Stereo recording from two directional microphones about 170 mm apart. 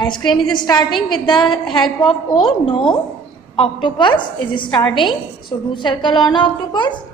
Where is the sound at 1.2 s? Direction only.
25° left (ahead or behind).